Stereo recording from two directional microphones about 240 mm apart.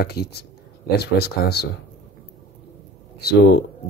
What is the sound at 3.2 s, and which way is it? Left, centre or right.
Speech, left.